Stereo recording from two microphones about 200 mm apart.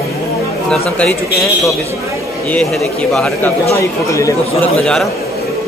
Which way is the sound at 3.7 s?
15° left (ahead or behind).